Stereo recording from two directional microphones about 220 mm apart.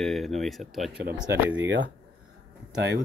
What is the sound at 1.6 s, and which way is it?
Speech, 55° right (ahead or behind).